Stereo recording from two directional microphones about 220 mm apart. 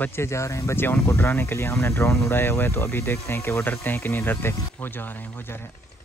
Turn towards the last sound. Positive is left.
turn(degrees=10)  # may be behind; listen again after turning